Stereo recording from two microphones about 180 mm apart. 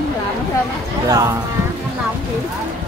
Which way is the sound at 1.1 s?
20° right (ahead or behind).